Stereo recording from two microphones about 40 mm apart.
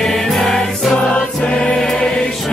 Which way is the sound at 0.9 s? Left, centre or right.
Left.